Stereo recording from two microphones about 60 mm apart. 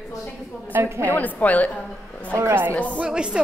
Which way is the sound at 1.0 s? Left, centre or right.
Left.